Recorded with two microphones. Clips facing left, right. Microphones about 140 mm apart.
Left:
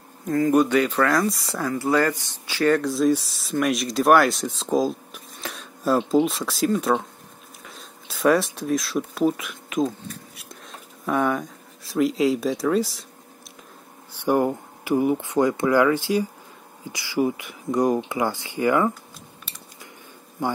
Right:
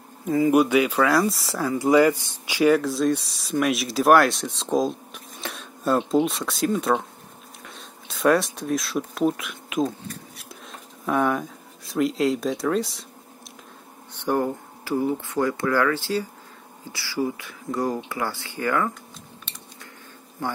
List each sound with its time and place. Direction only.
0.3 s speech: 10° right (ahead or behind)
14.2 s speech: 15° left (ahead or behind)